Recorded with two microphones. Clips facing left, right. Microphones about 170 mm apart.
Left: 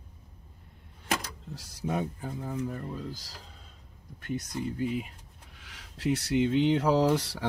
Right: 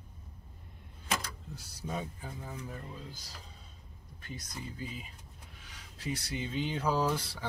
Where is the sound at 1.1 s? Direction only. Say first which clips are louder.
Left 4 dB; 90° left; by 3.0 s 50° left (ahead or behind).